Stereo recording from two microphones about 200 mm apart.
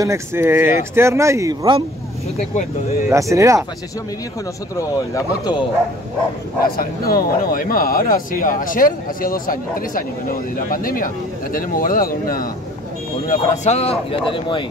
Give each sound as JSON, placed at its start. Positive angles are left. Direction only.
{"t": 0.0, "sound": "speech", "side_deg": -15}
{"t": 2.3, "sound": "speech", "side_deg": 35}
{"t": 3.1, "sound": "speech", "side_deg": -15}
{"t": 4.7, "sound": "speech", "side_deg": 20}
{"t": 6.6, "sound": "a man's voice", "side_deg": 50}
{"t": 13.3, "sound": "speech", "side_deg": 30}